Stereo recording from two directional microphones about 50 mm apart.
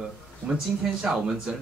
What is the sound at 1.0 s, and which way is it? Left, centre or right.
Speech, centre.